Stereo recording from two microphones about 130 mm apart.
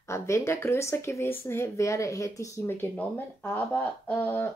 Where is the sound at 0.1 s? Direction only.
20° left (ahead or behind).